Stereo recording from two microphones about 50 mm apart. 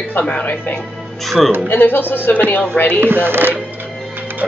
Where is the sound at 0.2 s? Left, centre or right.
Left.